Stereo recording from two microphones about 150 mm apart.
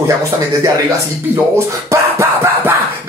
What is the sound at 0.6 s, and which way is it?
Speech, 20° right (ahead or behind).